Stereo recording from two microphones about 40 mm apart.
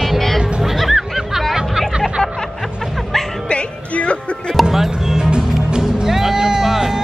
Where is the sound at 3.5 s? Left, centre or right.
Left.